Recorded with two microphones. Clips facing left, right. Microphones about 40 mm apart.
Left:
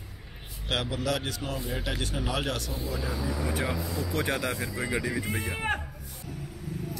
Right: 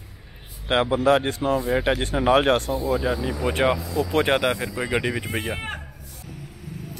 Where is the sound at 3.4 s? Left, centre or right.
Right.